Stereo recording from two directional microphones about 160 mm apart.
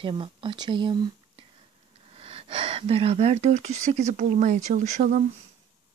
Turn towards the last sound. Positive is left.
turn(degrees=-50)  # may be behind; listen again after turning